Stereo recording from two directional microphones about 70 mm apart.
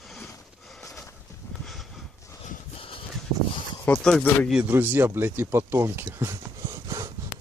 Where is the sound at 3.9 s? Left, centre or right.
Centre.